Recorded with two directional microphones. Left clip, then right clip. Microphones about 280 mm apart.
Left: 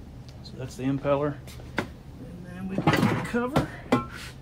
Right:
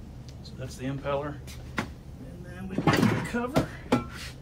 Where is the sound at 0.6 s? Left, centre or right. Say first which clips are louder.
Left 5 dB; left.